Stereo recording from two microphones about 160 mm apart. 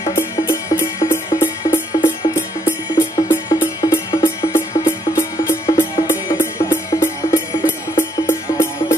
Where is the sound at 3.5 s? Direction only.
25° left (ahead or behind).